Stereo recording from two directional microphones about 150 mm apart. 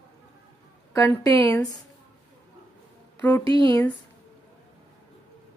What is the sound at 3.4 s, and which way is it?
Speech, 35° right (ahead or behind).